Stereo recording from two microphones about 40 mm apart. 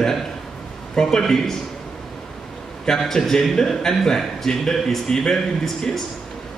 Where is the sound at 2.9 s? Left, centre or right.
Centre.